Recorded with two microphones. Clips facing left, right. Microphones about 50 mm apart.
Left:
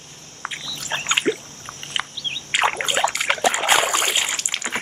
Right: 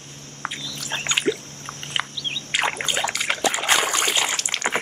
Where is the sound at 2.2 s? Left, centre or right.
Centre.